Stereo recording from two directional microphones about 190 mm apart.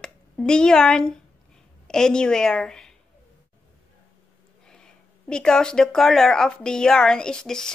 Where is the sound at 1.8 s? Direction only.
5° left (ahead or behind).